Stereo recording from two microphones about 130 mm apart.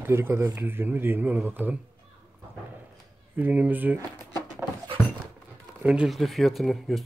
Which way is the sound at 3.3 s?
15° right (ahead or behind).